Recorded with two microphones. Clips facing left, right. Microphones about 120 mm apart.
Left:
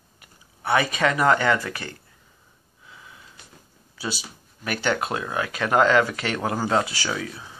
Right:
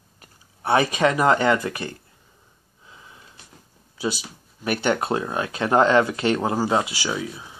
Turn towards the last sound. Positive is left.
turn(degrees=-15)  # may be behind; listen again after turning